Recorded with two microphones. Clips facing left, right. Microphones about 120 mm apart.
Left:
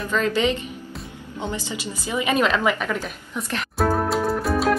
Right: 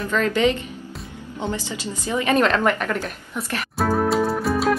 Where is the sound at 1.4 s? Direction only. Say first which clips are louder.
Right 2 dB; 15° left (ahead or behind).